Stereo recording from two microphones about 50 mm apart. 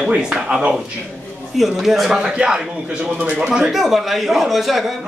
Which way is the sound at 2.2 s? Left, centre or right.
Centre.